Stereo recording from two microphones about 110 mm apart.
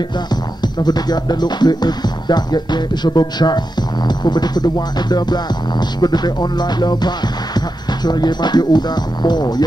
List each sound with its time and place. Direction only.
0.8 s music: 40° left (ahead or behind)